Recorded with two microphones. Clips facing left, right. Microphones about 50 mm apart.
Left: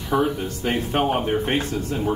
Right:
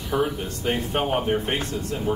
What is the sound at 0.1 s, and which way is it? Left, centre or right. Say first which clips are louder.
Speech: left 3 dB; left.